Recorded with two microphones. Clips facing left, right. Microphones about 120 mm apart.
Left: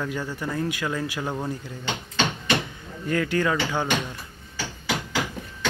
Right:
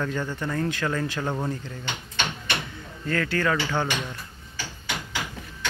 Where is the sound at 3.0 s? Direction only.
15° left (ahead or behind).